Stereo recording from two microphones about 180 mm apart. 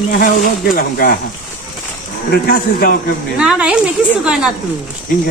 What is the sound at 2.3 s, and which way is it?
Speech, 55° left (ahead or behind).